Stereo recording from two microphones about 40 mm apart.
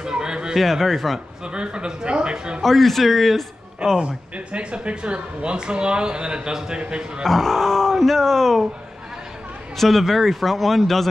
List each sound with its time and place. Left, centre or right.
0.0 s a sound: centre
0.6 s speech: centre
1.4 s speech: right
2.6 s speech: centre
4.0 s speech: right
7.2 s speech: centre
9.8 s speech: centre